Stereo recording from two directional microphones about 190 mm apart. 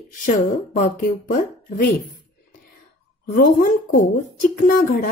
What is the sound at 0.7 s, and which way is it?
Speech, 45° left (ahead or behind).